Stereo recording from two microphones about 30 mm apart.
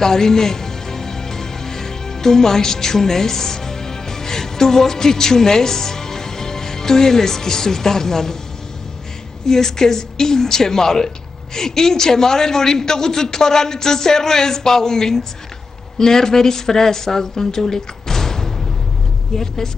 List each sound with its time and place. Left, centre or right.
0.0 s music: centre
9.5 s a man's voice: centre